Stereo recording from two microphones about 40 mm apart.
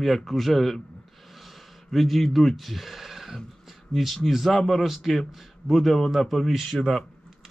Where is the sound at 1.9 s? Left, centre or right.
Centre.